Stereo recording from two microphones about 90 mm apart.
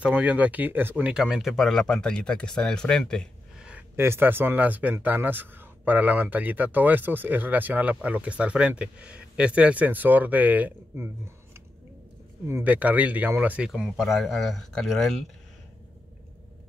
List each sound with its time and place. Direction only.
0.0 s speech: 15° right (ahead or behind)
1.1 s speech: 5° right (ahead or behind)
3.9 s speech: 25° right (ahead or behind)
12.6 s speech: 15° right (ahead or behind)
13.7 s speech: centre (ahead or behind)